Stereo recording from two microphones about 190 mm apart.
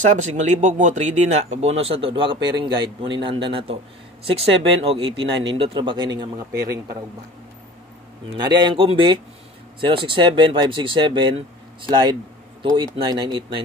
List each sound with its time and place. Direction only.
0.1 s speech: 40° right (ahead or behind); by 6.2 s 25° right (ahead or behind)
6.3 s speech: 55° right (ahead or behind)
8.5 s speech: 25° right (ahead or behind)